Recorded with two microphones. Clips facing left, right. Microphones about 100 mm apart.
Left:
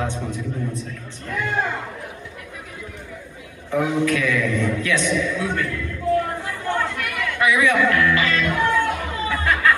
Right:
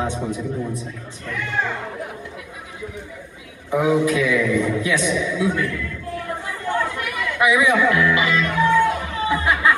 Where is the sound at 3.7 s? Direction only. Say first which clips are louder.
Right 2 dB; 15° right (ahead or behind).